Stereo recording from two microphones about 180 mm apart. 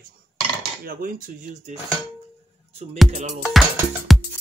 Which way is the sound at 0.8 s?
55° right (ahead or behind).